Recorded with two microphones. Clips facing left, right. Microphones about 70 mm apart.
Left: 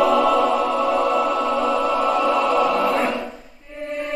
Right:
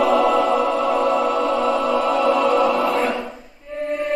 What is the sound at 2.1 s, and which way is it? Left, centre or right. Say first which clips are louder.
Music: right 1 dB; centre.